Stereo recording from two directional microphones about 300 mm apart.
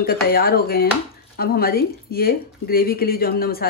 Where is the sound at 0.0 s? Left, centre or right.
Left.